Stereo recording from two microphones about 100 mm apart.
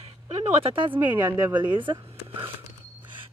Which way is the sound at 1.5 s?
55° right (ahead or behind).